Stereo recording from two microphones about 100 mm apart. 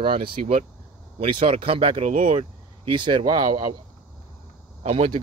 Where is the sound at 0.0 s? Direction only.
60° right (ahead or behind); by 2.3 s 75° right (ahead or behind).